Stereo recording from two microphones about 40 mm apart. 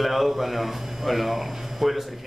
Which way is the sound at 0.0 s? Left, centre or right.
Centre.